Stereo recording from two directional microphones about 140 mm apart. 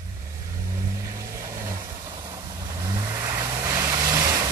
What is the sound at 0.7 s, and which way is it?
Vehicle, 25° right (ahead or behind).